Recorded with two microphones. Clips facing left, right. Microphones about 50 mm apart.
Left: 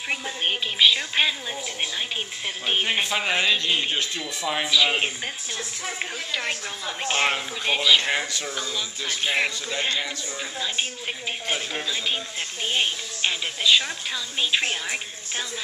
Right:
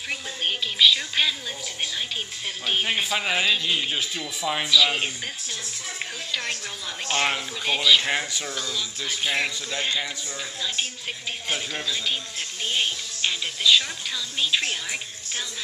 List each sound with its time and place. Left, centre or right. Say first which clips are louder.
0.1 s speech: left 2 dB; centre
2.6 s a man's voice: left 1 dB; centre
4.0 s a man's voice: even; centre
4.6 s speech: even; centre
8.5 s speech: left 1 dB; centre
11.4 s speech: even; centre